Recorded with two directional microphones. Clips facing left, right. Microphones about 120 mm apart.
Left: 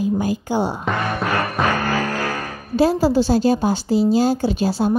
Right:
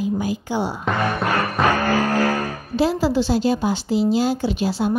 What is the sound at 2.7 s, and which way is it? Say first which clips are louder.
A woman's voice: left 3 dB; 40° left (ahead or behind).